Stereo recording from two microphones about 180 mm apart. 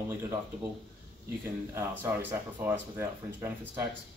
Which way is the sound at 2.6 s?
15° right (ahead or behind).